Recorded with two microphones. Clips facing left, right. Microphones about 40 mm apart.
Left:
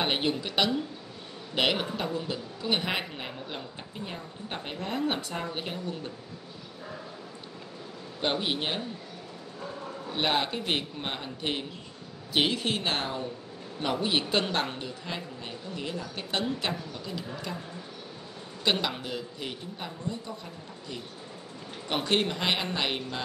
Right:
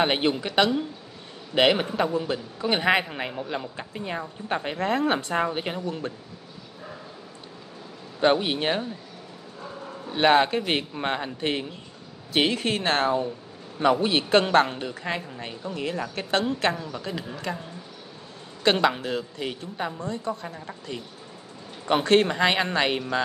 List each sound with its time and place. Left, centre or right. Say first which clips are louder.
0.0 s speech: right 5 dB; right
3.2 s speech: right 7 dB; right
8.2 s a woman's voice: right 7 dB; right
10.1 s a woman's voice: right 9 dB; right
18.6 s a woman's voice: right 7 dB; right